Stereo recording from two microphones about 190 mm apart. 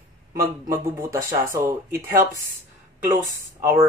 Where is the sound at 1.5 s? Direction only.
10° right (ahead or behind).